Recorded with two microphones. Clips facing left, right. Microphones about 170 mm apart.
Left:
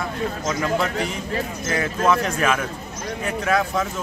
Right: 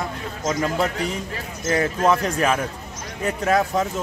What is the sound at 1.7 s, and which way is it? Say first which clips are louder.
Speech: right 2 dB; 35° right (ahead or behind).